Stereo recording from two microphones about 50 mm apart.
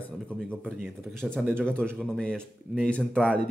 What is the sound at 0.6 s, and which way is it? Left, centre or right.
Speech, right.